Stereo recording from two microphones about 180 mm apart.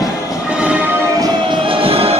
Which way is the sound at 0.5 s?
5° right (ahead or behind).